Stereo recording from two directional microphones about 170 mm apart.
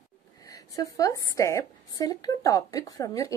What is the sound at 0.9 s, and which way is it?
Speech, 20° left (ahead or behind).